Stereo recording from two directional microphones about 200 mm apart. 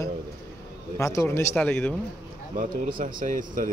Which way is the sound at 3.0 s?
40° right (ahead or behind).